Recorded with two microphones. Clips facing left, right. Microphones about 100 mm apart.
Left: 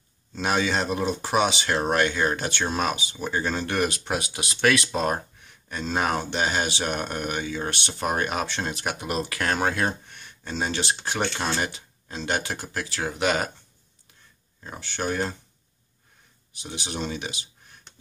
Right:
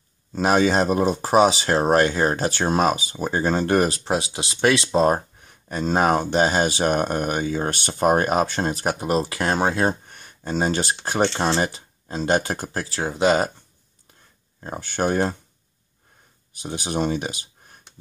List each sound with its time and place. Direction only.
0.3 s speech: 40° right (ahead or behind)
11.2 s speech: 30° right (ahead or behind)
14.6 s speech: 45° right (ahead or behind)
16.5 s speech: 45° right (ahead or behind)